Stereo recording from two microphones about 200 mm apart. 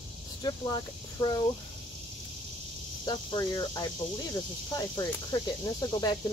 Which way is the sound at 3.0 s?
20° left (ahead or behind).